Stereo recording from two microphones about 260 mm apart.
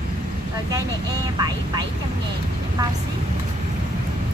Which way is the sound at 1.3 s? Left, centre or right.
Centre.